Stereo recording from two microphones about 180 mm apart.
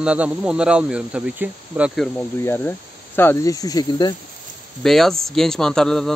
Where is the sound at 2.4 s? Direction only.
10° left (ahead or behind).